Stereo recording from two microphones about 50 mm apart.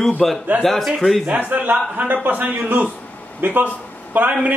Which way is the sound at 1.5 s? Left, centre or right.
Right.